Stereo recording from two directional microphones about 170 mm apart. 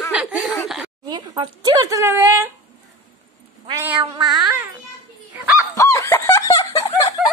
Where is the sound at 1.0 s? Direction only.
25° right (ahead or behind).